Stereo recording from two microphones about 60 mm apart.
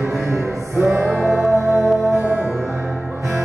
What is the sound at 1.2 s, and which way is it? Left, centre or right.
Music, centre.